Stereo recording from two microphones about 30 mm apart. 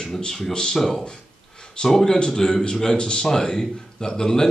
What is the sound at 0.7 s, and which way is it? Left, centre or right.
Speech, centre.